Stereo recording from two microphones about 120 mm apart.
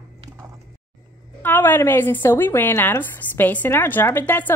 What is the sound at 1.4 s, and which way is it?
Speech, 15° left (ahead or behind).